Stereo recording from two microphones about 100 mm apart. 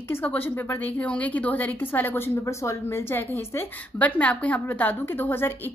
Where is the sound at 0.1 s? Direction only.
20° left (ahead or behind).